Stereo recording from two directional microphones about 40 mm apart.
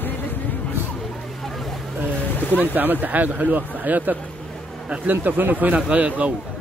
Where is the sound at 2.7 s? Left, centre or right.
Right.